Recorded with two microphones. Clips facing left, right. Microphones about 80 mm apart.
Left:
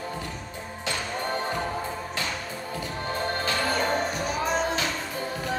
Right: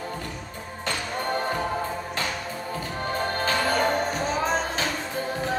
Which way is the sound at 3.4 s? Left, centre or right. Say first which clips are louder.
Right 4 dB; right.